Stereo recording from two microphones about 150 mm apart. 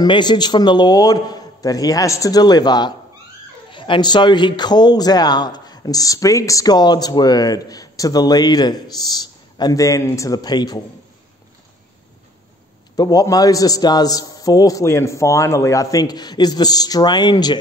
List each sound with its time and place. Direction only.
0.0 s a man's voice: 30° left (ahead or behind)
12.9 s a man's voice: 25° left (ahead or behind)